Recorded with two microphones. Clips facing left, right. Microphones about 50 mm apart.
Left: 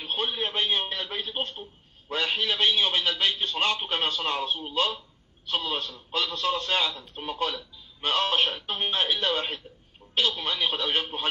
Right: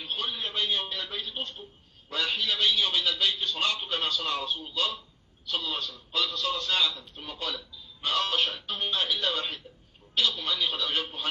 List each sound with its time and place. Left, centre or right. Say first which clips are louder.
0.0 s a man's voice: left 4 dB; left